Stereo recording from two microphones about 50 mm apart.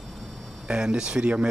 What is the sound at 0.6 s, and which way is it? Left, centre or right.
Speech, centre.